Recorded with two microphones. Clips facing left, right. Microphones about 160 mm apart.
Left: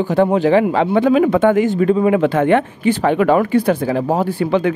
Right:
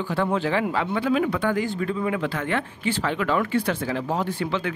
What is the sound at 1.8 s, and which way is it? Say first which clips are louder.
Speech: left 12 dB; 65° left (ahead or behind).